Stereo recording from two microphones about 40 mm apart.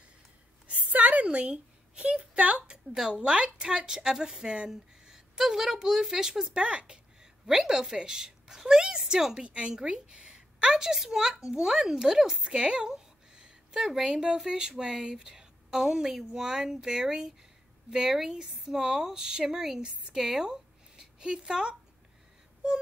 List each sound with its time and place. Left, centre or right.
0.7 s a sound: right
1.2 s a child's voice: right
2.9 s a woman's voice: centre
7.4 s a woman's voice: centre
10.7 s a woman's voice: centre
12.4 s a woman's voice: right